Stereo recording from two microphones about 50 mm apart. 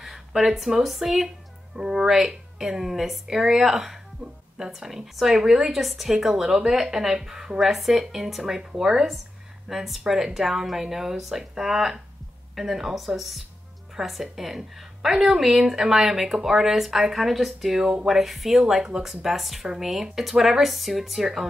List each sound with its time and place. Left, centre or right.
0.0 s a woman's voice: centre
4.2 s speech: right
4.6 s a woman's voice: centre